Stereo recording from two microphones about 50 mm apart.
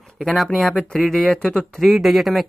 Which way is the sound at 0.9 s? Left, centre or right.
Centre.